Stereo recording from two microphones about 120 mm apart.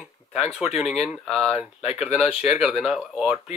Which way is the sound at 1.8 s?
65° left (ahead or behind).